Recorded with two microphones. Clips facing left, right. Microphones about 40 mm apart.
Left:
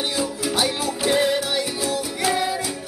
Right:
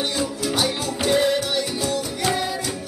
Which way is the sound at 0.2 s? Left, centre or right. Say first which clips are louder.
Left 1 dB; centre.